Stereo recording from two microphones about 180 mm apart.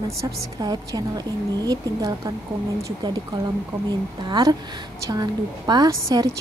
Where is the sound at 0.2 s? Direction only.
25° right (ahead or behind).